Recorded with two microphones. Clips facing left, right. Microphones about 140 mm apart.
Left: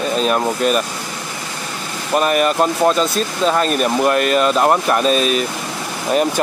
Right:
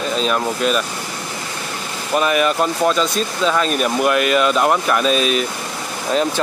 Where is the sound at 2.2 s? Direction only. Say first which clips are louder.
Left 1 dB; 45° left (ahead or behind).